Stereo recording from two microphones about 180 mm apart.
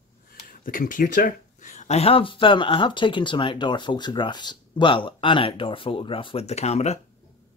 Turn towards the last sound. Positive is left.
turn(degrees=35)  # may be behind; listen again after turning